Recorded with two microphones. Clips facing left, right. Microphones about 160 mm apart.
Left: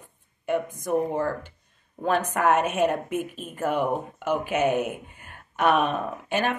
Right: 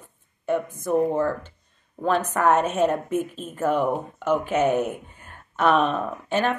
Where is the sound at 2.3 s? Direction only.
15° left (ahead or behind).